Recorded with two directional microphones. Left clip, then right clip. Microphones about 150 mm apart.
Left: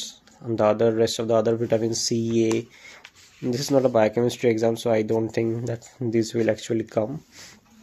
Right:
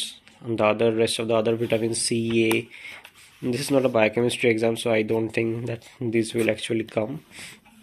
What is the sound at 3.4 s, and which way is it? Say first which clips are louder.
Speech: left 1 dB; 35° left (ahead or behind).